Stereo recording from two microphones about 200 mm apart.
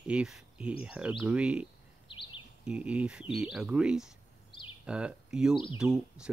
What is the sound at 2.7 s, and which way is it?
Speech, 5° right (ahead or behind).